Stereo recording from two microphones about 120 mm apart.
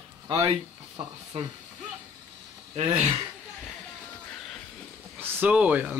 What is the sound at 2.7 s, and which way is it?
Speech, 65° right (ahead or behind).